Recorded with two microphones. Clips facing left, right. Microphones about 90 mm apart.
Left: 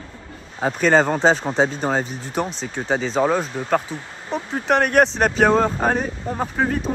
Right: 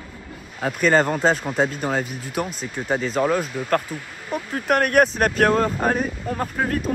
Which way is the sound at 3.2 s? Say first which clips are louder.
Left 1 dB; 30° left (ahead or behind).